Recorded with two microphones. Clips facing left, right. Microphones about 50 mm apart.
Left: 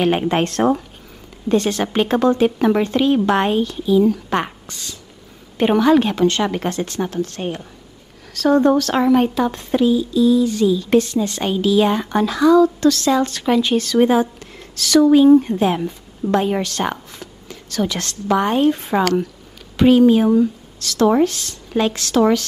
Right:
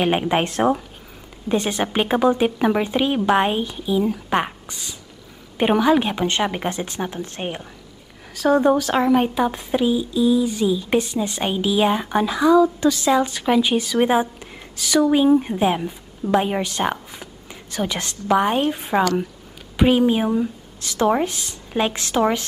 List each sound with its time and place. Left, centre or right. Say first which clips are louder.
0.0 s speech: left 2 dB; centre
8.4 s a woman's voice: left 2 dB; centre